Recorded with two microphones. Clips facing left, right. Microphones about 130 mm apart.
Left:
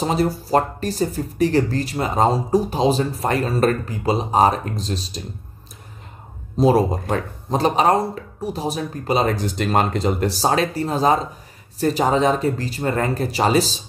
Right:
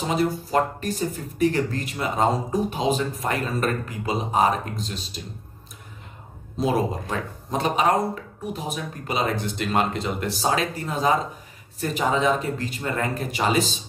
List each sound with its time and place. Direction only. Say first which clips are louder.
0.0 s speech: left 3 dB; 35° left (ahead or behind)
6.6 s speech: left 7 dB; 35° left (ahead or behind)